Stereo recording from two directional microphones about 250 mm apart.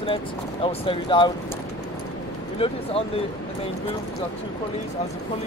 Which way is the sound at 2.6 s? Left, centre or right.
Left.